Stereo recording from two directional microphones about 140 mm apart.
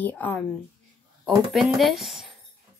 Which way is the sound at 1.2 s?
Centre (ahead or behind).